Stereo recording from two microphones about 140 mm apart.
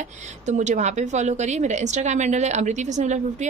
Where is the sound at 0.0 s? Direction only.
60° right (ahead or behind).